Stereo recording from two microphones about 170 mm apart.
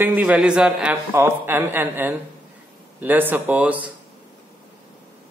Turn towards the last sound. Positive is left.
turn(degrees=-10)  # may be behind; listen again after turning